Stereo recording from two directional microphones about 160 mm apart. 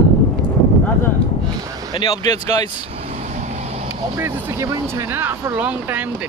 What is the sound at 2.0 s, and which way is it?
Speech, 25° left (ahead or behind).